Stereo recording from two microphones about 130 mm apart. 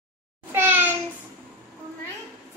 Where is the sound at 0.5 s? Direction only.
15° right (ahead or behind).